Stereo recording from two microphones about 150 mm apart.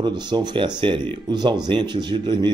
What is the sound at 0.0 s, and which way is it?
A man's voice, 30° right (ahead or behind).